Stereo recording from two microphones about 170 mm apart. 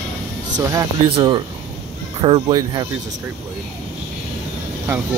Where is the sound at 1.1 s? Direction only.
30° right (ahead or behind).